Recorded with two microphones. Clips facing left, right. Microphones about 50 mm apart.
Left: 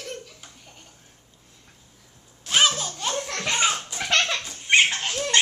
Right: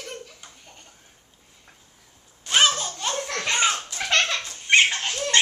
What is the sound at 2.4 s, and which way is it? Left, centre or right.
Children playing, centre.